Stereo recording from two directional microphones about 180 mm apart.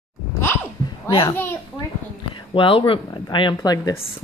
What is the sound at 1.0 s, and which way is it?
Speech, 30° left (ahead or behind).